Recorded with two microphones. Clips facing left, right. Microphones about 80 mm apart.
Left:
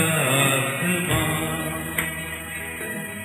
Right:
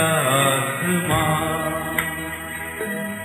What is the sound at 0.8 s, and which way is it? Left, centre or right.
Music, right.